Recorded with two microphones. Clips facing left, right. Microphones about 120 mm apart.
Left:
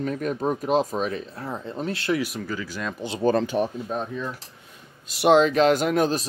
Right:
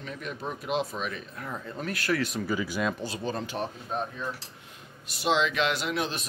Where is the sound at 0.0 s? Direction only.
45° left (ahead or behind); by 2.1 s 25° left (ahead or behind).